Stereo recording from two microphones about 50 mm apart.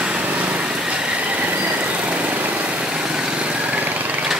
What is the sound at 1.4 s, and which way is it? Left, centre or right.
Vehicle, right.